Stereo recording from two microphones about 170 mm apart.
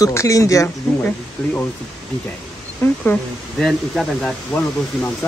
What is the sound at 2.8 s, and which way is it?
Speech, 10° left (ahead or behind).